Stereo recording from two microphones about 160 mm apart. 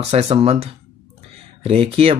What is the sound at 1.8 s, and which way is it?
Speech, 35° right (ahead or behind).